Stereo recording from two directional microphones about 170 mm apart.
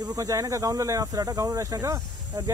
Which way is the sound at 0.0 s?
20° right (ahead or behind).